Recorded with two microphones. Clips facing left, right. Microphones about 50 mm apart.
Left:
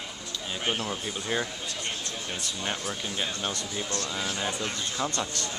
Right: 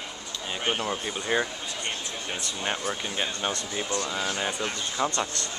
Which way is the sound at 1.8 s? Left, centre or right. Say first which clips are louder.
Right 2 dB; centre.